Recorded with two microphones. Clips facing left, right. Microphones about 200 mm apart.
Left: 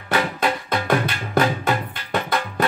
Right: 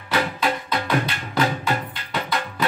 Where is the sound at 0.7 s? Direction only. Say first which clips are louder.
Left 2 dB; 50° left (ahead or behind).